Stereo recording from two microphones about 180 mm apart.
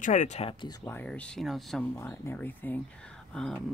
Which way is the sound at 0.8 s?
10° left (ahead or behind).